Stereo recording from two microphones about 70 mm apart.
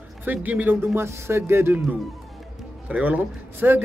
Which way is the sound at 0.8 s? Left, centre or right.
Right.